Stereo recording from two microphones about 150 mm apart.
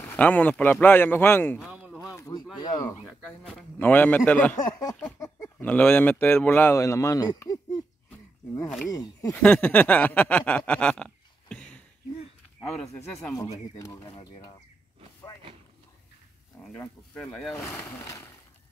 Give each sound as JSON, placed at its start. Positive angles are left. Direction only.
{"t": 0.0, "sound": "speech", "side_deg": 10}
{"t": 1.6, "sound": "a sound", "side_deg": -5}
{"t": 2.1, "sound": "a sound", "side_deg": 25}
{"t": 2.5, "sound": "speech", "side_deg": 25}
{"t": 3.3, "sound": "speech", "side_deg": 5}
{"t": 4.6, "sound": "speech", "side_deg": 25}
{"t": 8.6, "sound": "speech", "side_deg": 0}
{"t": 9.3, "sound": "a sound", "side_deg": 10}
{"t": 13.3, "sound": "speech", "side_deg": 25}
{"t": 16.8, "sound": "speech", "side_deg": 5}
{"t": 17.6, "sound": "speech", "side_deg": 15}